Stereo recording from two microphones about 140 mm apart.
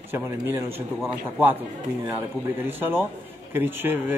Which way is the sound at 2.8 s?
15° right (ahead or behind).